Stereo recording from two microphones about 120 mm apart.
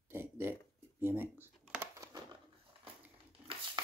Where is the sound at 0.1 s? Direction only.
20° right (ahead or behind).